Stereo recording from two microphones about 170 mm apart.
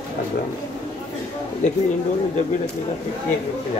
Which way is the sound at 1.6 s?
45° left (ahead or behind).